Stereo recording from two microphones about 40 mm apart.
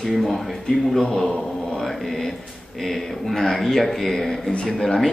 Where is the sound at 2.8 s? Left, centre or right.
Centre.